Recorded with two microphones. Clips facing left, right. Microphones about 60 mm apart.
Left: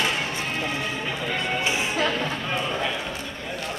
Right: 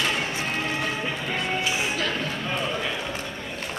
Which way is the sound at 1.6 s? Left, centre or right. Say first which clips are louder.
Left 2 dB; left.